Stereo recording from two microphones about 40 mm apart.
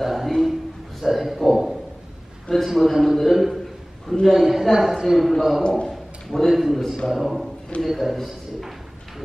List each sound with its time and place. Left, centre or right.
0.0 s a man's voice: centre
1.0 s a sound: centre
2.5 s a man's voice: centre
5.6 s a man's voice: left
5.9 s a sound: centre
6.5 s a man's voice: centre